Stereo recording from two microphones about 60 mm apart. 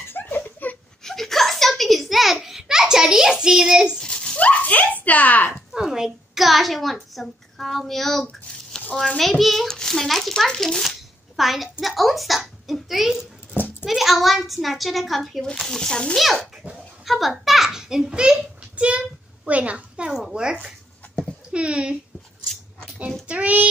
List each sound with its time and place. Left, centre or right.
0.1 s a sound: left
1.0 s a sound: centre
4.0 s a sound: centre
4.4 s speech: left
5.7 s a woman's voice: centre
9.2 s a child's voice: centre
13.5 s a sound: left
13.8 s a child's voice: centre
15.6 s speech: centre
16.6 s dog: right
17.0 s a child's voice: centre; by 20.1 s right
20.1 s speech: centre
23.2 s child singing: right